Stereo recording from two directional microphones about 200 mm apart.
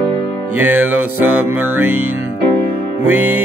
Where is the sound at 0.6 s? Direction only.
10° right (ahead or behind).